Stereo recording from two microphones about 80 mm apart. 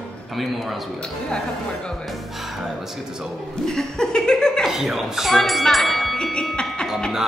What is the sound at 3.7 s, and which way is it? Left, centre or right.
Laughter, centre.